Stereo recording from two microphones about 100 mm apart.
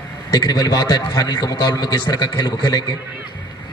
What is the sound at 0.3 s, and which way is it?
A man's voice, 40° left (ahead or behind).